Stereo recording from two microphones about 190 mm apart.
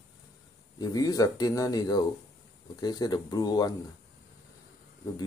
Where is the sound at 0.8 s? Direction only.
20° left (ahead or behind).